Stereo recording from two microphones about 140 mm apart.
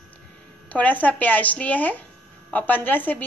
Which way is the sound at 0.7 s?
10° left (ahead or behind).